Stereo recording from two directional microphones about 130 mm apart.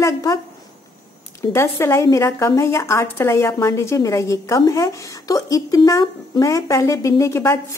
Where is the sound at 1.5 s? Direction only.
20° left (ahead or behind).